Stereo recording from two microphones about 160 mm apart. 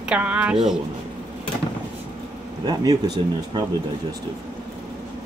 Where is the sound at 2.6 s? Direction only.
25° right (ahead or behind).